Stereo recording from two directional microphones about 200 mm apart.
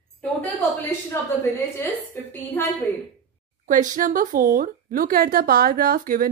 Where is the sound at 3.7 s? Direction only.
40° right (ahead or behind).